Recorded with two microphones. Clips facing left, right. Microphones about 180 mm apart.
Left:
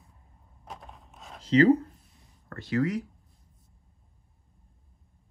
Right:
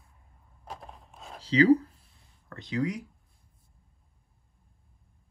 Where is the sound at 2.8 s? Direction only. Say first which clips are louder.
Left 3 dB; 15° right (ahead or behind).